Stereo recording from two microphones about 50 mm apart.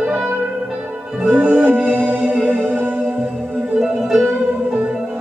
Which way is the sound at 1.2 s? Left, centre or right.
Right.